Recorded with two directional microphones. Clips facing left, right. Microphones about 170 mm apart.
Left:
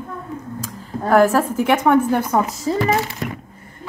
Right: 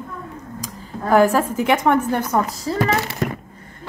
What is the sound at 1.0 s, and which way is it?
Speech, 5° left (ahead or behind).